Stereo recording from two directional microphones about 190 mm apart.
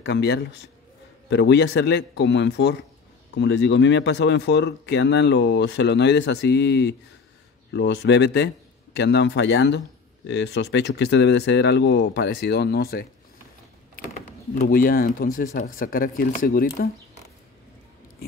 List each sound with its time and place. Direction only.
0.0 s speech: 65° left (ahead or behind)
14.7 s speech: 50° left (ahead or behind)